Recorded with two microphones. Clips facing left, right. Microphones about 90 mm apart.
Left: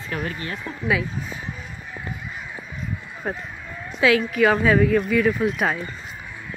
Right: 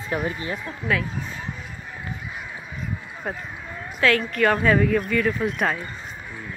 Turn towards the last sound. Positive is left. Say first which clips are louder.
# left 2 dB
turn(degrees=5)  # may be behind; listen again after turning